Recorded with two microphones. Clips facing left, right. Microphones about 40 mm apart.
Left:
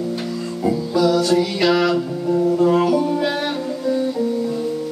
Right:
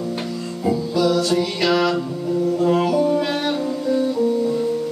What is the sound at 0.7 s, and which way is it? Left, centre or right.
Music, centre.